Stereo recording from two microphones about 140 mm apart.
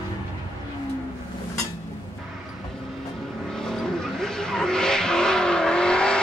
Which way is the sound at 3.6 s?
5° left (ahead or behind).